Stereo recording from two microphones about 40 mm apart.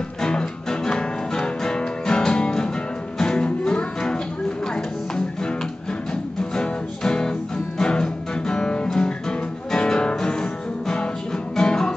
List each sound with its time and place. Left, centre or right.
0.2 s music: centre
6.5 s music: centre